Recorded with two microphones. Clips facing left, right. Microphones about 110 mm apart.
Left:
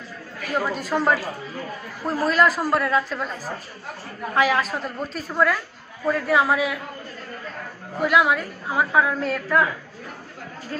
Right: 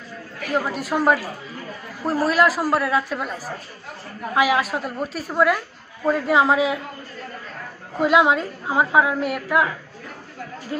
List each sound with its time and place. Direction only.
0.7 s a man's voice: 5° right (ahead or behind)
4.4 s a man's voice: 10° right (ahead or behind)
8.0 s a woman's voice: 20° right (ahead or behind)